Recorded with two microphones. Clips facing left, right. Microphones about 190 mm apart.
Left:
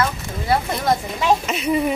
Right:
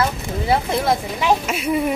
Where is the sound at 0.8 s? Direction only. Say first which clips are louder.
Even; 5° right (ahead or behind).